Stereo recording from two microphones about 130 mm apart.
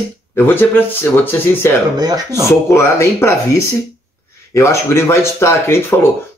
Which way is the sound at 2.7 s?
20° left (ahead or behind).